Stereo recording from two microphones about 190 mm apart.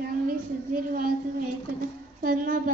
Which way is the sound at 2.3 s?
50° right (ahead or behind).